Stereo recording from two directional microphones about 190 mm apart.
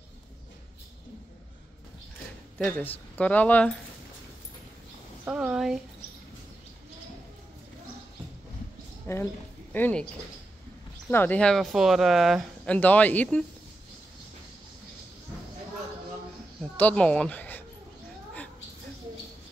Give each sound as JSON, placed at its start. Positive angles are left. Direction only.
{"t": 2.6, "sound": "speech", "side_deg": 10}
{"t": 5.2, "sound": "speech", "side_deg": -5}
{"t": 9.0, "sound": "speech", "side_deg": 15}
{"t": 11.1, "sound": "speech", "side_deg": 10}
{"t": 16.7, "sound": "speech", "side_deg": 5}